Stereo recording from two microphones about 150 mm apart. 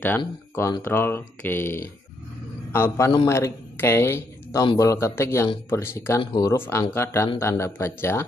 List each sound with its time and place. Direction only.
0.6 s speech: 20° left (ahead or behind)